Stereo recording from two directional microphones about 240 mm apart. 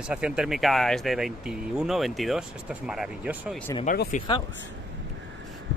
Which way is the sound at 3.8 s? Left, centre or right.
Left.